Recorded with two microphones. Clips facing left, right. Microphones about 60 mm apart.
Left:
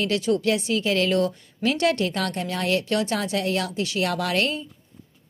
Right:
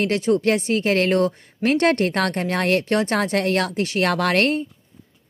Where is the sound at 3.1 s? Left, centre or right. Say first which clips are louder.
Right 5 dB; right.